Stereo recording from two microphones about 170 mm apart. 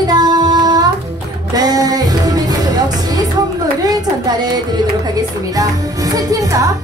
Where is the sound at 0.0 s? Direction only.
25° right (ahead or behind).